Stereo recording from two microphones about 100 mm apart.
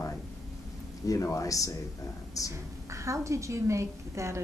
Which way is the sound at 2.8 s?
30° right (ahead or behind).